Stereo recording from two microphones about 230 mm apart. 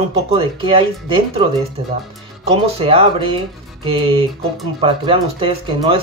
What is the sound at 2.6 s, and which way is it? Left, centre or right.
Speech, right.